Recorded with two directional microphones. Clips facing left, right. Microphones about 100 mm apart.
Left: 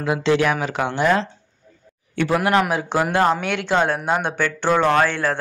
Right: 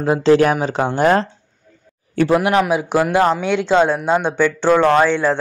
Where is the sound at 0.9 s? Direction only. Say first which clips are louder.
Right 4 dB; 45° right (ahead or behind).